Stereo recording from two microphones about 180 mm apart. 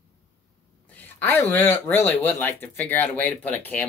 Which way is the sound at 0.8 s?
10° left (ahead or behind).